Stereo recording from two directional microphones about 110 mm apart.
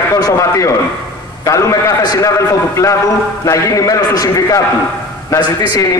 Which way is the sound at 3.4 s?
30° left (ahead or behind).